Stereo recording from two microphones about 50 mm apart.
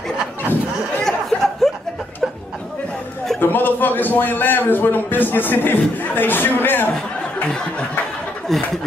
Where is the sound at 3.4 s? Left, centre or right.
Left.